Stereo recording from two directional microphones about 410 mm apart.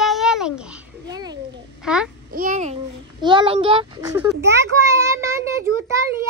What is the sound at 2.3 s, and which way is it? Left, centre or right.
A child's voice, centre.